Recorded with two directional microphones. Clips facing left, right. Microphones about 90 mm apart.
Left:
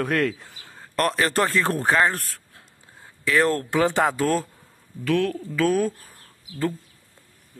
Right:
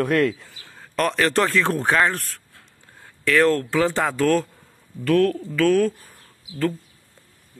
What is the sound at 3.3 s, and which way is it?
Speech, 15° left (ahead or behind).